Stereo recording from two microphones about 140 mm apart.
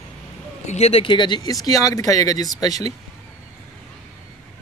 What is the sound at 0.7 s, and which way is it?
Speech, 50° left (ahead or behind).